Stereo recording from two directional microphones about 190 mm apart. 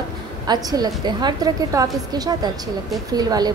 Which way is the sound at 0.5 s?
20° right (ahead or behind).